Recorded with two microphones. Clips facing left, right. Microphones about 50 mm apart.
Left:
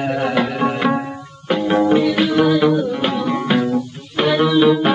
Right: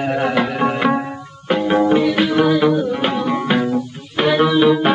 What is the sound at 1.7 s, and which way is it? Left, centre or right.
Music, centre.